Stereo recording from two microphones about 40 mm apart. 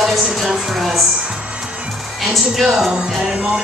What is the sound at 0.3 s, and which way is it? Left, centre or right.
Speech, centre.